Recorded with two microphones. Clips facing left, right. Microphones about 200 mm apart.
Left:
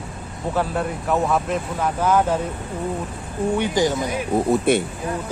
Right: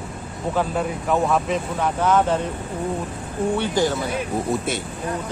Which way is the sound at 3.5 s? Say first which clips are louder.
Left 2 dB; 15° left (ahead or behind).